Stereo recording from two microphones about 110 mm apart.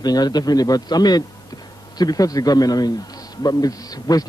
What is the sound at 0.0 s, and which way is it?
A man's voice, 40° left (ahead or behind).